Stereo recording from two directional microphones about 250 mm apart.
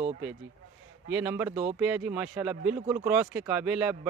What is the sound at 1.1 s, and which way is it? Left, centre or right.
Speech, centre.